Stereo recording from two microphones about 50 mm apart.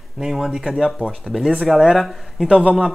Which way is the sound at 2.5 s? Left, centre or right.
Right.